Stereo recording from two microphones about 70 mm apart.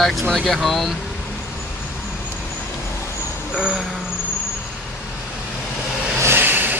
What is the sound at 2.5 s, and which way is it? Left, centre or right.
Vehicle, left.